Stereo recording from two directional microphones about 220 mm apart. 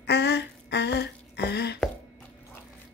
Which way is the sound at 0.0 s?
50° left (ahead or behind).